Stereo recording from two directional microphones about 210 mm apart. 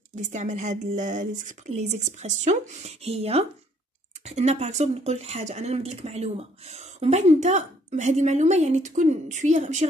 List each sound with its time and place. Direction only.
0.1 s speech: 35° right (ahead or behind)